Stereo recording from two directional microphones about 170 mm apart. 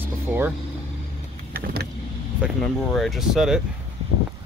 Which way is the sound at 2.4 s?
10° right (ahead or behind).